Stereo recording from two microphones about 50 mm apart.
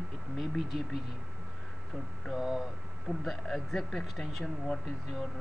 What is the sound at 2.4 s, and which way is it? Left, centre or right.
Speech, centre.